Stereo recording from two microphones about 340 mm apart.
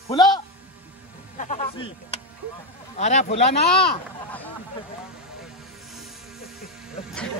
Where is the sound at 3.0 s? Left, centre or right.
Centre.